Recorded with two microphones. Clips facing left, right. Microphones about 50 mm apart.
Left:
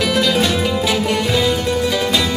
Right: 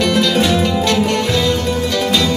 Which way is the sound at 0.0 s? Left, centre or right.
Centre.